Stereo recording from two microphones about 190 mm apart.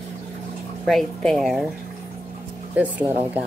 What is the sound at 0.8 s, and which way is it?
Speech, centre (ahead or behind).